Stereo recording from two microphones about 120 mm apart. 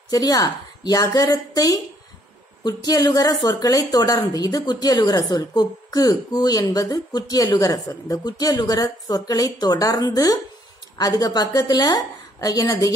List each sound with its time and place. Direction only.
0.1 s a woman's voice: 35° left (ahead or behind)